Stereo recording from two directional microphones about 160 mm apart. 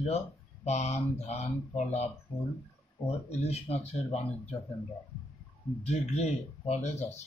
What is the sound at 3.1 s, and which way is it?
Speech, 40° left (ahead or behind).